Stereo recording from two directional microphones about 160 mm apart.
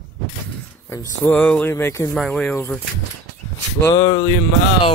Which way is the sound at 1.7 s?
20° left (ahead or behind).